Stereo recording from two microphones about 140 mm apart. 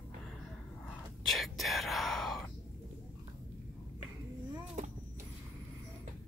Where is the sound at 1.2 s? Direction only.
Centre (ahead or behind).